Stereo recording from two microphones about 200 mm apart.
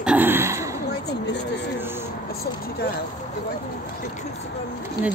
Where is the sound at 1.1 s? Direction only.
55° left (ahead or behind).